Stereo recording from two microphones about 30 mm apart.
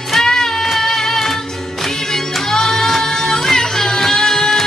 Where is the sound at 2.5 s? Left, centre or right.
Centre.